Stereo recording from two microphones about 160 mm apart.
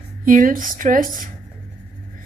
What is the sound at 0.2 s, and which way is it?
Speech, 55° right (ahead or behind).